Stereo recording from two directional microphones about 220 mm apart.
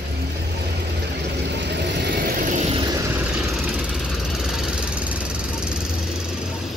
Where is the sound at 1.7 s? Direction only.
50° right (ahead or behind).